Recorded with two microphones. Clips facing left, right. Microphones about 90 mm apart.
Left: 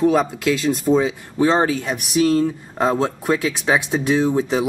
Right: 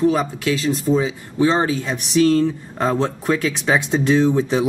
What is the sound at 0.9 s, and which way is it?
Speech, 30° left (ahead or behind).